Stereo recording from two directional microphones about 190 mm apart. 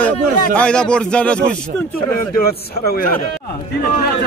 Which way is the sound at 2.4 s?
55° left (ahead or behind).